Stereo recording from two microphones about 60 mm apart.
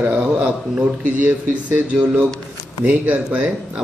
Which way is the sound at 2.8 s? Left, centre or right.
Right.